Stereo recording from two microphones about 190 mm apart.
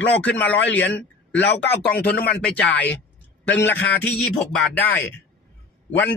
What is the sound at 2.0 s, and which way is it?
Speech, 55° left (ahead or behind).